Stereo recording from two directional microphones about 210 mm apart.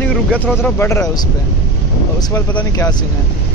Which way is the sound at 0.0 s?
5° left (ahead or behind).